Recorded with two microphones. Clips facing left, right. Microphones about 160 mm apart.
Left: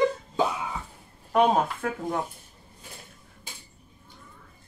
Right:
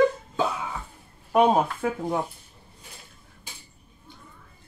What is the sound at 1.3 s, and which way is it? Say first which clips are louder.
Speech: right 2 dB; 10° right (ahead or behind).